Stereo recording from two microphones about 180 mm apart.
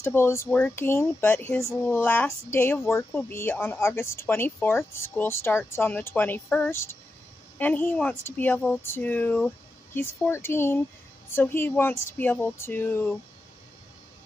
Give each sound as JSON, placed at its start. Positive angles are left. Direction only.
{"t": 0.0, "sound": "speech", "side_deg": 15}